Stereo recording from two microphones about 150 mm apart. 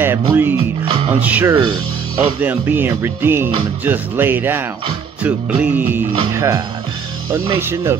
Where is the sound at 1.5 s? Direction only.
30° right (ahead or behind).